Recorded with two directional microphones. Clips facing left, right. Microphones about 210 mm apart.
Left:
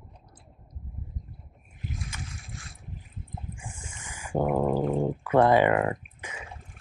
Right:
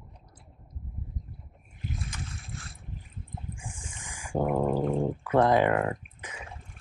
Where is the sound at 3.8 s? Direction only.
5° left (ahead or behind).